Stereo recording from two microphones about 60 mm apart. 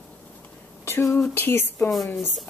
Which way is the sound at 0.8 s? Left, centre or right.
Left.